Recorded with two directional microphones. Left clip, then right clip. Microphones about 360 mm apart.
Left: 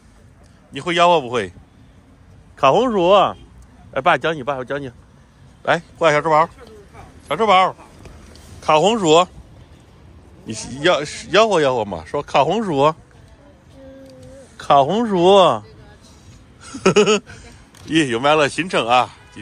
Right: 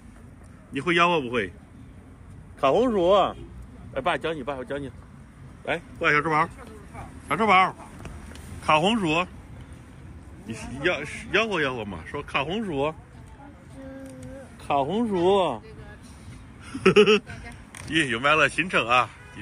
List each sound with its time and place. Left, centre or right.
0.7 s a man's voice: centre
2.6 s a man's voice: left
10.5 s speech: left
14.6 s speech: left
16.7 s a man's voice: centre